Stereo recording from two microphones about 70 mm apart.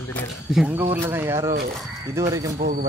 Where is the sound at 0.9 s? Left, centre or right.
Right.